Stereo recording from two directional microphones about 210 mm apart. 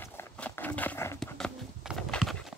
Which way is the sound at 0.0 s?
10° left (ahead or behind).